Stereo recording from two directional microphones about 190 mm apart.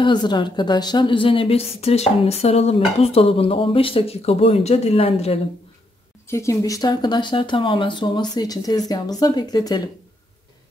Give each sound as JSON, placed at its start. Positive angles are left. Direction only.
{"t": 0.0, "sound": "a woman's voice", "side_deg": 25}
{"t": 6.2, "sound": "a woman's voice", "side_deg": 15}